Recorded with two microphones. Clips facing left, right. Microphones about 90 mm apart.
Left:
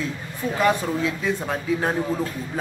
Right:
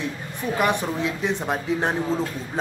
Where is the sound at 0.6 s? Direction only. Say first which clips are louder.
Left 2 dB; 20° right (ahead or behind).